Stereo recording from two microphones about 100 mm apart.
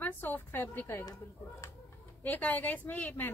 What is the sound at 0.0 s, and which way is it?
A woman's voice, 20° left (ahead or behind).